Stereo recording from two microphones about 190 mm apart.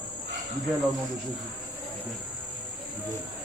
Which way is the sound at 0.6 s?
Centre (ahead or behind).